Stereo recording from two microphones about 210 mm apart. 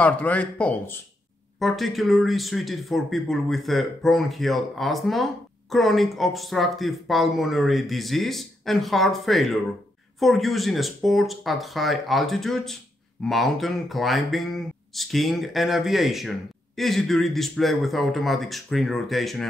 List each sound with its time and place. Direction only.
0.0 s speech: 5° left (ahead or behind)